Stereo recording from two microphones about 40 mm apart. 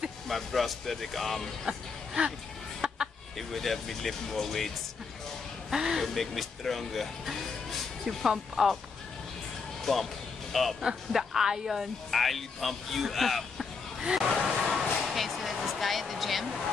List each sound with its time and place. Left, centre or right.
0.3 s speech: centre
1.7 s speech: right
2.8 s chicken: centre
3.3 s speech: centre
5.7 s speech: centre
6.0 s speech: centre
9.9 s speech: centre
11.1 s speech: centre
12.1 s speech: centre
14.4 s a sound: centre